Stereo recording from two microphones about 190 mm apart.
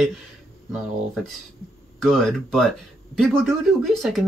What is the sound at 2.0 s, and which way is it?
Speech, centre (ahead or behind).